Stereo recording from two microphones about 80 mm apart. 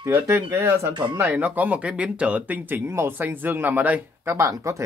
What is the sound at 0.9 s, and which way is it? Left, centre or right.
Speech, right.